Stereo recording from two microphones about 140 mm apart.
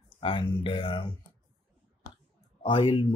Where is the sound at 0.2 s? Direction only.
35° left (ahead or behind).